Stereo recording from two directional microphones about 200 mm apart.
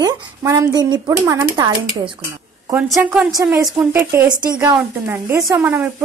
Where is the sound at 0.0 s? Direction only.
20° right (ahead or behind).